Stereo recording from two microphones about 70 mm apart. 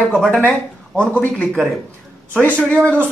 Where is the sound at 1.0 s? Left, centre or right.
Centre.